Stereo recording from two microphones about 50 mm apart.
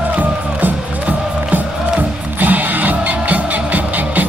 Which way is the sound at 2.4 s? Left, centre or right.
Right.